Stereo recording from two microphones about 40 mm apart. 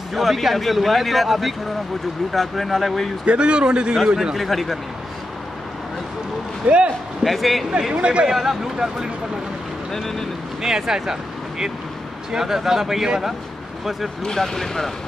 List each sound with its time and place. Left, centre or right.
0.1 s speech: centre
3.3 s a man's voice: right
4.4 s speech: centre
6.7 s speech: right
7.2 s speech: centre
7.9 s a man's voice: right
8.3 s speech: centre
9.9 s speech: centre
10.6 s speech: centre
14.2 s speech: centre